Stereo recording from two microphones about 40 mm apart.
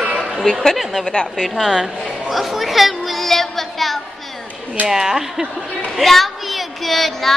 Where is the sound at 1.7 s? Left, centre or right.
Centre.